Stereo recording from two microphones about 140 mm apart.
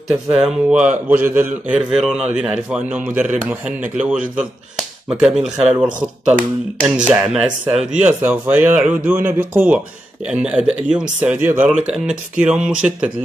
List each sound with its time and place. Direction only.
0.1 s speech: 5° right (ahead or behind)